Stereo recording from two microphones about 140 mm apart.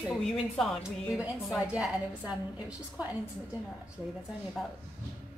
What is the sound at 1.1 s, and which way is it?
A woman's voice, 10° right (ahead or behind).